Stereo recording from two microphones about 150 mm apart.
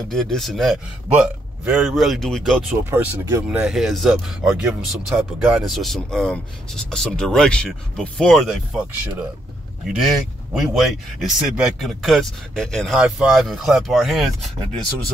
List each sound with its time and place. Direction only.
0.1 s speech: centre (ahead or behind)
2.8 s speech: 15° right (ahead or behind)
3.4 s speech: 5° right (ahead or behind)